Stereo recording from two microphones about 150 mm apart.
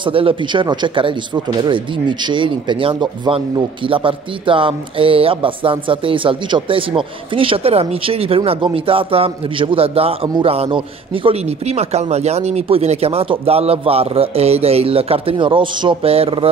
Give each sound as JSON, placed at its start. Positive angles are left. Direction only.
{"t": 0.0, "sound": "speech", "side_deg": -35}